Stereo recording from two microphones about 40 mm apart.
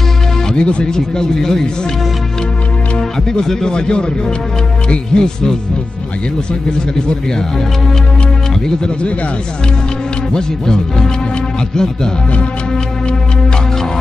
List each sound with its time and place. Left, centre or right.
0.6 s speech: left
0.8 s speech: centre
3.0 s speech: centre
8.6 s speech: left
10.3 s speech: centre